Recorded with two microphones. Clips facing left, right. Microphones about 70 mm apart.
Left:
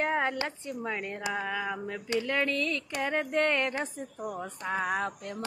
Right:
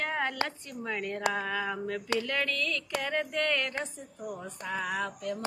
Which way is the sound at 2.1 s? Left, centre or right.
Left.